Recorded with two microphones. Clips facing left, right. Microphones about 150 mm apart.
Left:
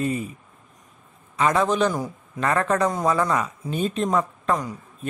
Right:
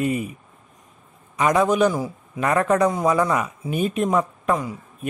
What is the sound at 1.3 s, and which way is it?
A man's voice, 15° right (ahead or behind).